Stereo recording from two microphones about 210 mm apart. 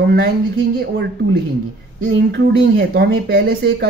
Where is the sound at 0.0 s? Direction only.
45° right (ahead or behind).